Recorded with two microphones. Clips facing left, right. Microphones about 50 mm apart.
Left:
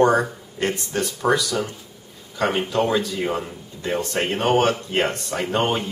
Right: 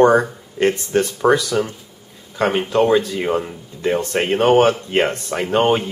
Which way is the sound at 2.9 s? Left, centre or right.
Right.